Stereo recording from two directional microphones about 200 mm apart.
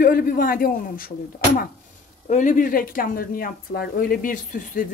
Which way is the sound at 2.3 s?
40° left (ahead or behind).